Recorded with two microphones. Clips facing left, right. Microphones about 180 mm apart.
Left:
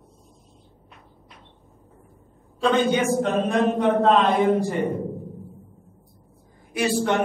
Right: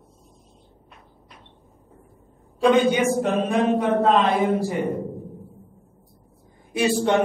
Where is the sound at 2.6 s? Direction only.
15° right (ahead or behind).